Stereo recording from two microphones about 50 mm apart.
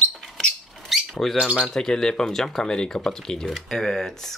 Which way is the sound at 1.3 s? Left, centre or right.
Centre.